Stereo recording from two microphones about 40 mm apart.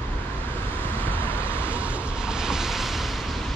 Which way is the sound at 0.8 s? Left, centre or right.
Left.